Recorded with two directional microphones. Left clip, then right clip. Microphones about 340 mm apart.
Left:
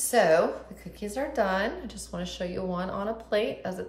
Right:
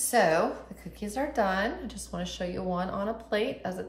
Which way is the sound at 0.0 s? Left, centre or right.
Centre.